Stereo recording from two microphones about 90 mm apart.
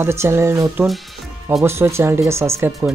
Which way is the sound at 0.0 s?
30° right (ahead or behind).